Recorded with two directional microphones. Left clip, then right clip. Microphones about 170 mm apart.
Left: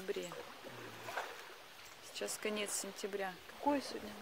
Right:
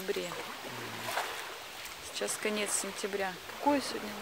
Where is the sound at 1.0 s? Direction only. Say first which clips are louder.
Right 8 dB; 55° right (ahead or behind).